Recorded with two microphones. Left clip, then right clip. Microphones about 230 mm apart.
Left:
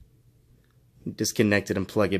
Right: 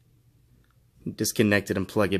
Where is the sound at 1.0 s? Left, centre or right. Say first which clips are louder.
Even; centre.